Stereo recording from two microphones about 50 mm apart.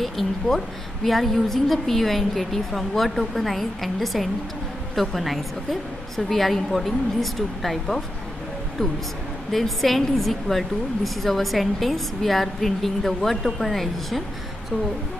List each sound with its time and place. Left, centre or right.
0.0 s a woman's voice: centre
9.5 s a woman's voice: centre